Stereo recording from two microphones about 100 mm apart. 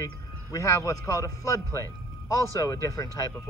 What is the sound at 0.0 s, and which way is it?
A man's voice, 30° left (ahead or behind).